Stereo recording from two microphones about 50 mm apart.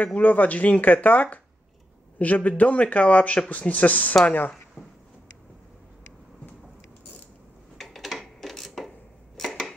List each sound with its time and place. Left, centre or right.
0.0 s speech: left
7.7 s a sound: centre
9.4 s dishes: centre